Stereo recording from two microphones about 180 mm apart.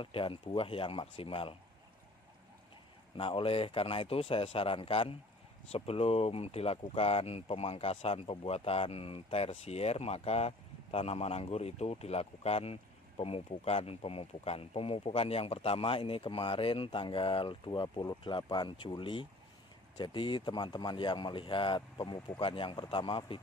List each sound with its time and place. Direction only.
0.0 s speech: 30° left (ahead or behind)
3.2 s speech: 30° left (ahead or behind)